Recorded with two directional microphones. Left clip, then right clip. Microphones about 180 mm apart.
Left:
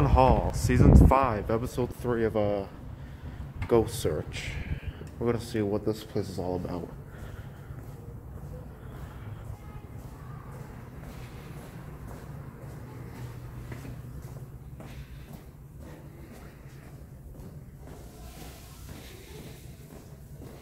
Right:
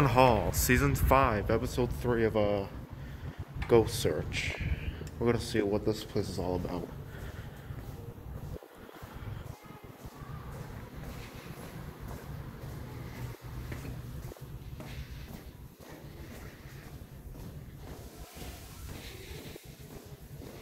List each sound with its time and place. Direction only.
0.0 s speech: centre (ahead or behind); by 4.7 s 20° left (ahead or behind)
5.2 s speech: 10° left (ahead or behind)
5.7 s speech: 25° left (ahead or behind)